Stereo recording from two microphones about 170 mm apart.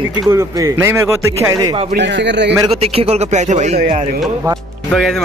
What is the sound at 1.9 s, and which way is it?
Speech, 90° right.